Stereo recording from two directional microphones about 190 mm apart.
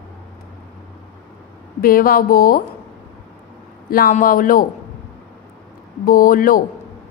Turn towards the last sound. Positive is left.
turn(degrees=50)  # may be behind; listen again after turning